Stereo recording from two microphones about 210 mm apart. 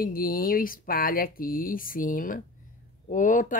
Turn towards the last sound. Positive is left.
turn(degrees=40)  # may be behind; listen again after turning